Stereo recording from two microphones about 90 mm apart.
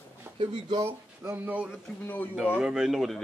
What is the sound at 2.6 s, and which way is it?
Speech, 5° right (ahead or behind).